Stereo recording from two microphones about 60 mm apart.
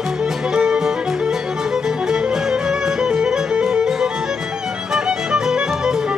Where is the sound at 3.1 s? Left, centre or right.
Centre.